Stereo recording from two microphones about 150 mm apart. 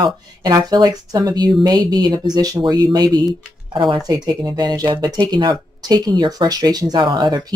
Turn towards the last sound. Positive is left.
turn(degrees=-25)  # may be behind; listen again after turning